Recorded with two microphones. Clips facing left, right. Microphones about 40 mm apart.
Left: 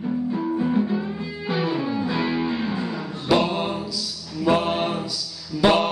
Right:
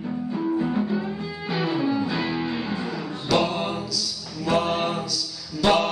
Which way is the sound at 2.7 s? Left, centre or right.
Centre.